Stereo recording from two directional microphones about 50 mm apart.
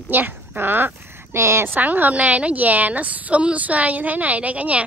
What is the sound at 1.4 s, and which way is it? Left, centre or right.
Speech, right.